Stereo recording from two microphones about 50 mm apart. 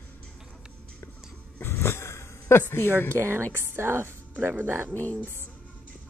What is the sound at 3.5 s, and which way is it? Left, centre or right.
A woman's voice, right.